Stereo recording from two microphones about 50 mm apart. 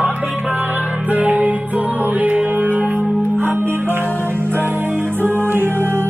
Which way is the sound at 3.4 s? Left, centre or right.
Right.